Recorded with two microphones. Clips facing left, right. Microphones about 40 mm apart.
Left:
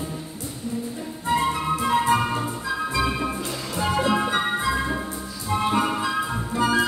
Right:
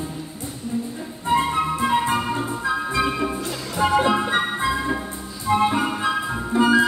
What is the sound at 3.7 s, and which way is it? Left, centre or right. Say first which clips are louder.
Music: right 5 dB; right.